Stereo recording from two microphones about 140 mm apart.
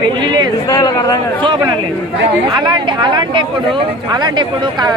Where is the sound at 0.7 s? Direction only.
25° left (ahead or behind).